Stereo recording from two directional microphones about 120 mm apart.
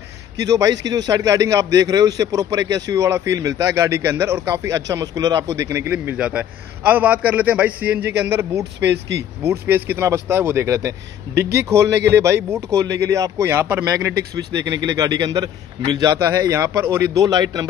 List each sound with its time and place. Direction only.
0.4 s a man's voice: 30° right (ahead or behind)
13.9 s speech: 30° right (ahead or behind)